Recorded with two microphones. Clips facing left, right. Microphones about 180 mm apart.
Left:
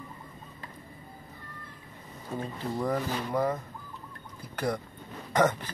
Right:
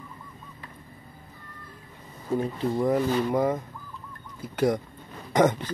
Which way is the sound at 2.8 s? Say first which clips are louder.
Right 7 dB; 10° right (ahead or behind).